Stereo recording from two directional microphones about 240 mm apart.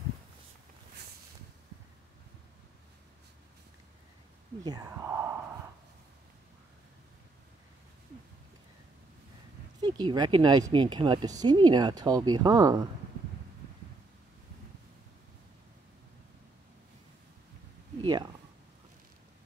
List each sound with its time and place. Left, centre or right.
4.6 s speech: centre
9.8 s speech: centre
18.0 s a sound: centre